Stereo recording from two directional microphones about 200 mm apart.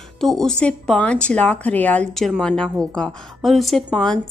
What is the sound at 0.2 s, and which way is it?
Speech, centre (ahead or behind).